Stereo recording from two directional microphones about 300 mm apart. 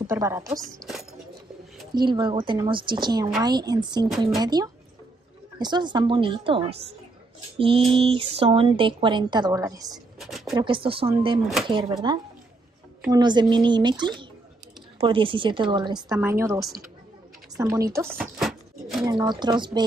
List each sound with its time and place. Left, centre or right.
0.0 s speech: centre
2.0 s speech: centre
10.1 s a sound: centre
10.5 s speech: centre
17.6 s a sound: centre
19.0 s speech: centre